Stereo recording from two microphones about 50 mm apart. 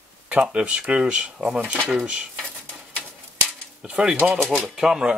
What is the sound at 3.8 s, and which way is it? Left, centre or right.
Speech, centre.